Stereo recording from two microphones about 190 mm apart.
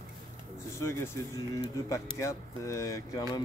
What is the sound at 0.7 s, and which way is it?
Speech, 15° left (ahead or behind).